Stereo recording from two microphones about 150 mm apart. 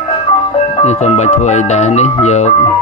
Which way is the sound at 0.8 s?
45° left (ahead or behind).